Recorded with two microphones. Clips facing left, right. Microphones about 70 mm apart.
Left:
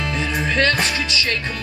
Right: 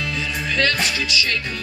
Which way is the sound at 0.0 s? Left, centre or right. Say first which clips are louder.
Left 3 dB; left.